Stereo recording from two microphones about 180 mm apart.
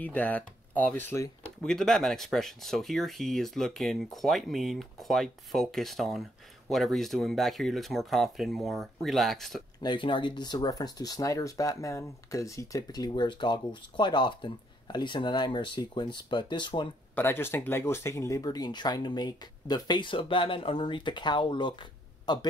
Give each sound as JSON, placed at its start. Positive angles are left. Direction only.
{"t": 0.0, "sound": "speech", "side_deg": 10}
{"t": 1.7, "sound": "speech", "side_deg": 0}
{"t": 9.8, "sound": "speech", "side_deg": 25}
{"t": 17.1, "sound": "speech", "side_deg": 10}